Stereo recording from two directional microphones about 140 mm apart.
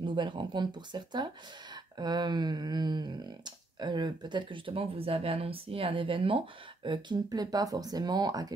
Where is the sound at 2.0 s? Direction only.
30° right (ahead or behind).